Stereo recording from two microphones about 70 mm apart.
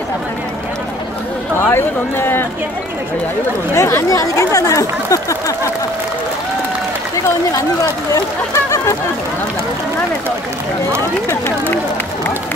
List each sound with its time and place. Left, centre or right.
1.7 s speech: left
3.7 s speech: left
7.5 s speech: left
8.6 s a sound: left